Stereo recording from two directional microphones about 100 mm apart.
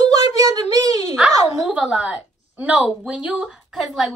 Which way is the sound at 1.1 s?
15° right (ahead or behind).